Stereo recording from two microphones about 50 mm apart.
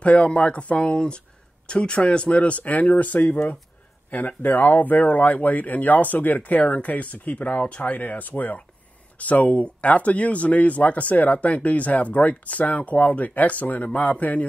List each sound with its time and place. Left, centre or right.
0.0 s speech: left